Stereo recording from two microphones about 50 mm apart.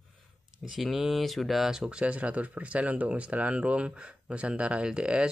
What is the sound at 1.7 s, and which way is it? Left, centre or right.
Speech, centre.